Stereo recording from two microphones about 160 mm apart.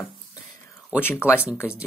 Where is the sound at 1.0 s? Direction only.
15° left (ahead or behind).